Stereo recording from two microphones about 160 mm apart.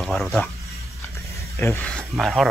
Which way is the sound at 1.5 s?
15° left (ahead or behind).